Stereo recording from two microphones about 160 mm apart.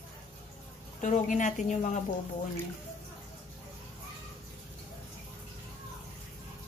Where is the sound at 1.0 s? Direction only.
50° left (ahead or behind).